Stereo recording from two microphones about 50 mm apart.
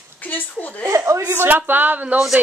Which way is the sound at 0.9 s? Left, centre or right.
Right.